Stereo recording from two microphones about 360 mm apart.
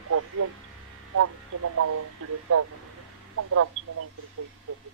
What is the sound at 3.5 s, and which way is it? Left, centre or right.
Speech, right.